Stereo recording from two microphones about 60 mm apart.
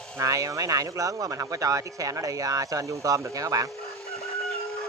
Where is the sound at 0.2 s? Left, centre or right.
Right.